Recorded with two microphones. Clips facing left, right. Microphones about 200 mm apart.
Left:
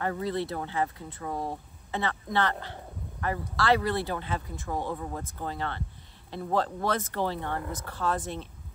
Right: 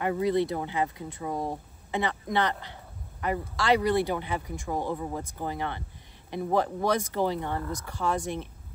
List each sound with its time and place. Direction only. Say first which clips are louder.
0.0 s speech: right 5 dB; 15° right (ahead or behind)